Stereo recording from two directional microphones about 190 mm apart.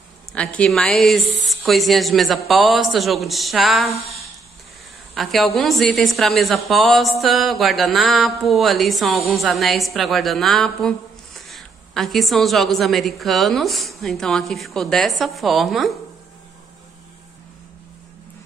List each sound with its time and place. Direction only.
0.3 s a woman's voice: 5° left (ahead or behind)
3.9 s speech: 35° left (ahead or behind)
5.1 s a woman's voice: centre (ahead or behind)